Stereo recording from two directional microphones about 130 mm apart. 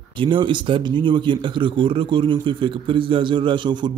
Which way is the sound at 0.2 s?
40° right (ahead or behind).